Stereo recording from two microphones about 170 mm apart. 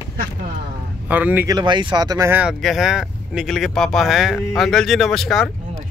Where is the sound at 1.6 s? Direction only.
25° right (ahead or behind).